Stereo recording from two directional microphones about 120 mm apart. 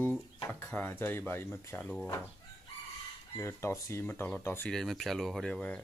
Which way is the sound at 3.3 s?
20° left (ahead or behind).